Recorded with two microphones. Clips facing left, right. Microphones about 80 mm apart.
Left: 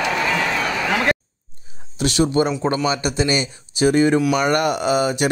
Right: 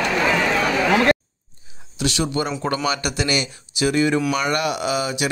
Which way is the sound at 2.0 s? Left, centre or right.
Left.